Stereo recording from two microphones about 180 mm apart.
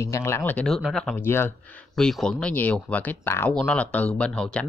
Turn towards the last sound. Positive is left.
turn(degrees=5)  # may be behind; listen again after turning